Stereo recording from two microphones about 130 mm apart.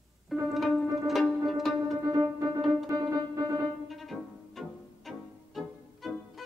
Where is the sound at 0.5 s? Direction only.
Centre (ahead or behind).